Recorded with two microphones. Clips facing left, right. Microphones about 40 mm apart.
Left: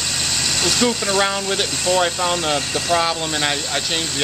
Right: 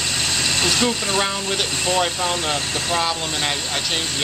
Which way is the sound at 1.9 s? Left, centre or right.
Centre.